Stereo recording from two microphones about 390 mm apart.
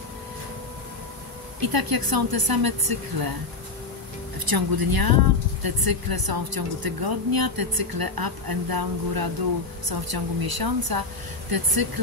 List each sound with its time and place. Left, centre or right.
1.6 s speech: right
4.5 s speech: right